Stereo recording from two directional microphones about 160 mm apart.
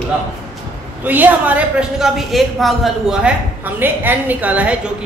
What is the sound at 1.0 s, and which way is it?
A woman's voice, 10° right (ahead or behind).